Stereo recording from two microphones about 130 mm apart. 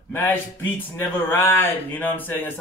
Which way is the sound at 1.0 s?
15° left (ahead or behind).